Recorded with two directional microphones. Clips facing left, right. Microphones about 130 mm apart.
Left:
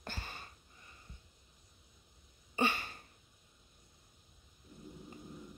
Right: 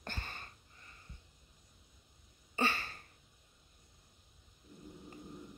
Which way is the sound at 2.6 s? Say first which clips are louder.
Left 1 dB; 15° left (ahead or behind).